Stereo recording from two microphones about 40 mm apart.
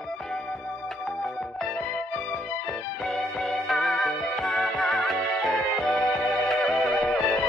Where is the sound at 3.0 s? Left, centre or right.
Centre.